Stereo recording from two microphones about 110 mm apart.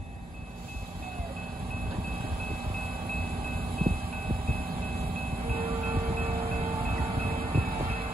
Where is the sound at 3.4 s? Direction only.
55° right (ahead or behind).